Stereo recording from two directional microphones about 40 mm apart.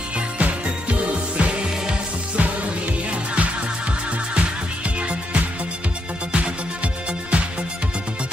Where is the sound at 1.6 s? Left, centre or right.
Centre.